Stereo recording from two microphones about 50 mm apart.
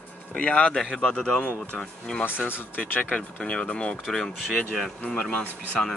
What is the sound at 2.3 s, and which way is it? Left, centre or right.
Speech, left.